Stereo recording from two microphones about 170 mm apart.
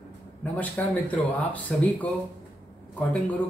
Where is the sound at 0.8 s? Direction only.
10° left (ahead or behind).